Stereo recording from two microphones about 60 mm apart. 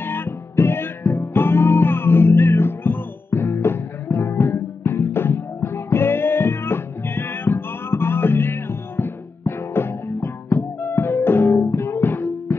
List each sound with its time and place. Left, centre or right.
0.0 s music: left
11.5 s music: left